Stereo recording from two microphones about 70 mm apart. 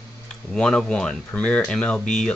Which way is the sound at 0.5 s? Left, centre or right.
Centre.